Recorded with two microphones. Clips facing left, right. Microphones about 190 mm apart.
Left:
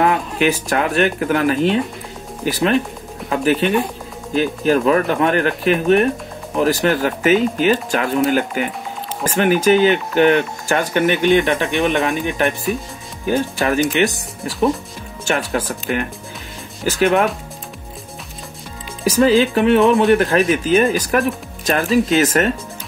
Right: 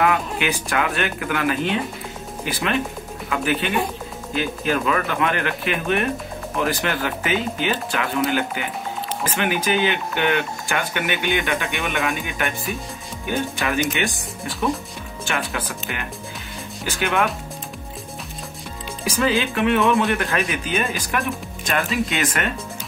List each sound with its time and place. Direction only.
0.0 s speech: 35° left (ahead or behind)
15.2 s speech: 45° left (ahead or behind)
19.0 s speech: 40° left (ahead or behind)
19.8 s speech: centre (ahead or behind)
20.1 s speech: 35° left (ahead or behind)